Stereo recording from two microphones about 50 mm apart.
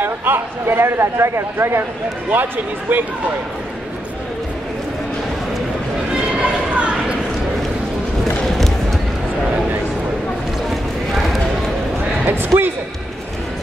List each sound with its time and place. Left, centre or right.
0.0 s speech: right
2.3 s speech: right
6.3 s a sound: right
10.7 s clip-clop: centre
12.3 s speech: right